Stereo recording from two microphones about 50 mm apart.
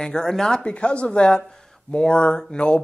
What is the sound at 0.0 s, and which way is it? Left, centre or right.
Speech, centre.